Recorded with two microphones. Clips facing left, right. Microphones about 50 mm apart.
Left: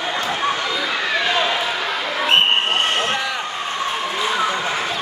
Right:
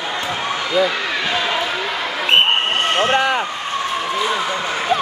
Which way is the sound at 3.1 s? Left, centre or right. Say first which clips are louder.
Right 7 dB; right.